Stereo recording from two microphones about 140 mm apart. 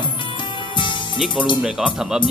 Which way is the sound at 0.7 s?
35° left (ahead or behind).